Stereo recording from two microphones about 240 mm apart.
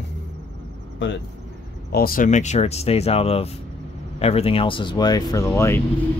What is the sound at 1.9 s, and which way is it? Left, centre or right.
Speech, left.